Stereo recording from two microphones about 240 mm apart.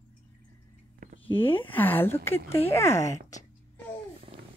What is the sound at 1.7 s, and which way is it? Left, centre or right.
Speech, centre.